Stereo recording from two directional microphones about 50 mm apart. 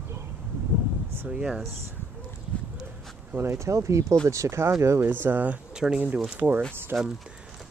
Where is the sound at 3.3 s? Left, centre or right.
Right.